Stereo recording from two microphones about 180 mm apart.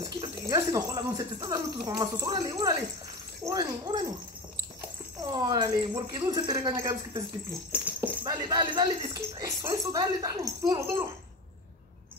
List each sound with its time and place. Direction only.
0.2 s speech: 20° right (ahead or behind)
5.3 s speech: 25° right (ahead or behind)
7.7 s dog: 5° right (ahead or behind)
8.2 s speech: 25° right (ahead or behind)